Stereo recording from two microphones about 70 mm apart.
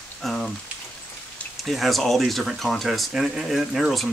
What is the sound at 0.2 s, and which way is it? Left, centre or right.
Rain on surface, centre.